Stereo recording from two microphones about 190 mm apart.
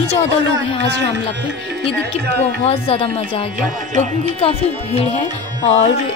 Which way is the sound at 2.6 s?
30° left (ahead or behind).